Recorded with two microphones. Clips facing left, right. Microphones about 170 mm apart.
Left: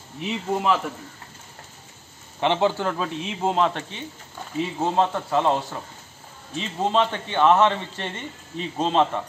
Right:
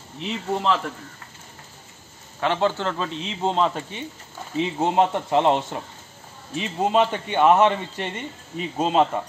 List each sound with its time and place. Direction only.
0.2 s speech: 10° left (ahead or behind)
2.4 s a man's voice: 15° left (ahead or behind); by 3.8 s centre (ahead or behind)
4.7 s speech: 15° right (ahead or behind)
6.5 s speech: 10° right (ahead or behind)